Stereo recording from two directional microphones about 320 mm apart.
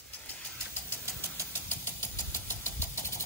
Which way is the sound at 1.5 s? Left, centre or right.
Centre.